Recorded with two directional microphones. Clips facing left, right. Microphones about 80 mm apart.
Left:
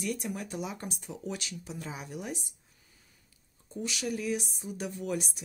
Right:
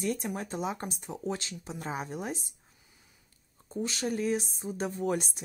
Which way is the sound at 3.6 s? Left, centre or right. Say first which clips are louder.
Right 2 dB; right.